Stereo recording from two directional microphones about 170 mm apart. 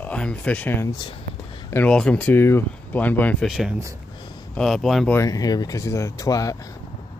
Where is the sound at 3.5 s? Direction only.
5° right (ahead or behind).